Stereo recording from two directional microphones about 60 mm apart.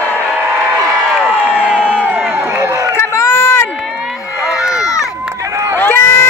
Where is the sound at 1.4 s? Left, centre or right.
Centre.